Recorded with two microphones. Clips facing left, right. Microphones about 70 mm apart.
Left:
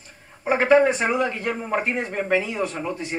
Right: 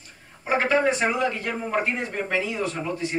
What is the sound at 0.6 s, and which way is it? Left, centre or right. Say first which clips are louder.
Speech: left 4 dB; left.